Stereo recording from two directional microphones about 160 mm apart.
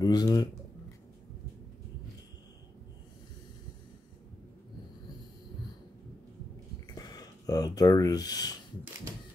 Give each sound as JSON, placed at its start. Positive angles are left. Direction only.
{"t": 0.0, "sound": "a man's voice", "side_deg": 25}
{"t": 7.0, "sound": "speech", "side_deg": 25}